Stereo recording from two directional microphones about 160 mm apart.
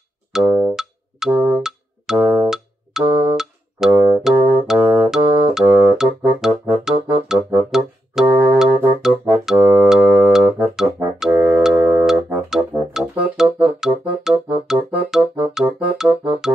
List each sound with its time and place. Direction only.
0.3 s music: 5° right (ahead or behind)
2.1 s music: 15° right (ahead or behind)
3.1 s music: 30° right (ahead or behind)
3.3 s music: centre (ahead or behind)
11.7 s music: 15° right (ahead or behind)
12.1 s music: 5° right (ahead or behind)